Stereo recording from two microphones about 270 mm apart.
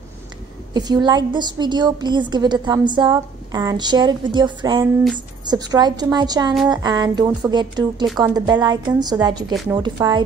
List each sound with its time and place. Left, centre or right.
0.7 s a woman's voice: centre